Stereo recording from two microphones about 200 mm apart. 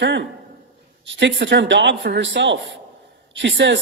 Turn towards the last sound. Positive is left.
turn(degrees=-60)  # may be behind; listen again after turning